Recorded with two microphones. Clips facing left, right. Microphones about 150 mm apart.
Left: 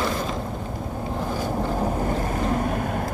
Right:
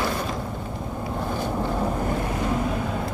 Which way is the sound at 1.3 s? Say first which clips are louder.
Even; 40° left (ahead or behind).